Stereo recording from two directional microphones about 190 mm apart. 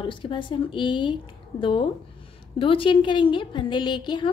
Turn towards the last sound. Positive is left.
turn(degrees=25)  # may be behind; listen again after turning